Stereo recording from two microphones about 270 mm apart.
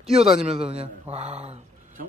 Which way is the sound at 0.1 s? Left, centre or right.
Right.